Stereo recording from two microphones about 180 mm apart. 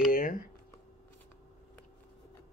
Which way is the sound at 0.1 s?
50° left (ahead or behind).